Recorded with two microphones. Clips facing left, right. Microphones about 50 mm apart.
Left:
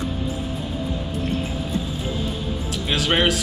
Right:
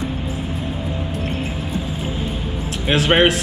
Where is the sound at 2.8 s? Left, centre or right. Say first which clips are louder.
Right 5 dB; right.